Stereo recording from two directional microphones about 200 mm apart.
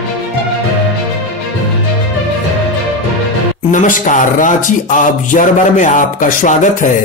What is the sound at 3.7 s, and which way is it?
Music, 40° left (ahead or behind).